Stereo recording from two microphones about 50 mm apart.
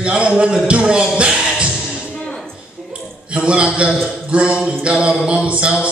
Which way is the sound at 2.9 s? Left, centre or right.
Right.